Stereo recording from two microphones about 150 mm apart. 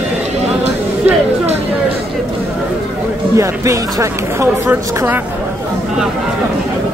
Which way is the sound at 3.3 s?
20° right (ahead or behind).